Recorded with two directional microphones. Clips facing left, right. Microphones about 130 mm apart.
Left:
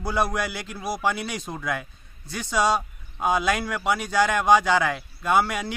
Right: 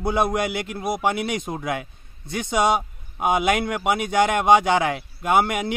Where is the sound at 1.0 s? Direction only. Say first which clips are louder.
Right 3 dB; 55° right (ahead or behind).